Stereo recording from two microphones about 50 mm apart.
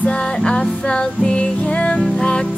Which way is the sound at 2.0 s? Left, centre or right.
Centre.